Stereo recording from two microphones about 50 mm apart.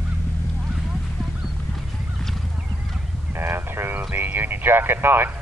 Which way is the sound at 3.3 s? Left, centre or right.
Right.